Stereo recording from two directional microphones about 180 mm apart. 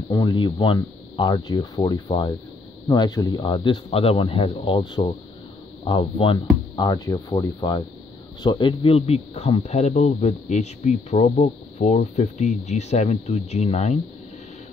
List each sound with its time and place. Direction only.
0.1 s speech: 25° left (ahead or behind)